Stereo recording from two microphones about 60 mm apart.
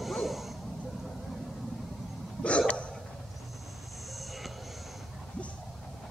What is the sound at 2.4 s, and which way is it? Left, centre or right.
Hiccup, centre.